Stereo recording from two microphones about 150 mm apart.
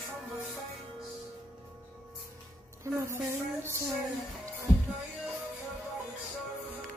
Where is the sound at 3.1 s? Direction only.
15° right (ahead or behind).